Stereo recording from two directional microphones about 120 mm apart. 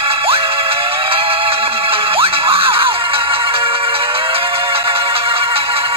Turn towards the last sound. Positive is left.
turn(degrees=-50)  # may be behind; listen again after turning